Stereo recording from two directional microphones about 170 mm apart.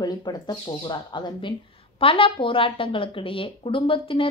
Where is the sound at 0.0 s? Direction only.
25° left (ahead or behind).